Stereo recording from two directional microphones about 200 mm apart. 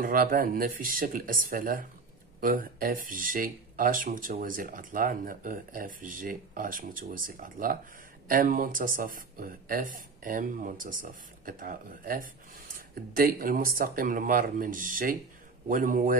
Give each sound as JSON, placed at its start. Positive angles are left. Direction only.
{"t": 0.0, "sound": "speech", "side_deg": -45}